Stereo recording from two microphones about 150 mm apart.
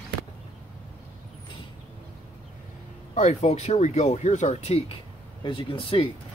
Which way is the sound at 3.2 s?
50° left (ahead or behind).